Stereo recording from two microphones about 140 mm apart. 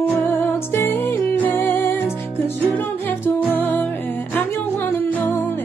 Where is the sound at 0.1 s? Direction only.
15° left (ahead or behind).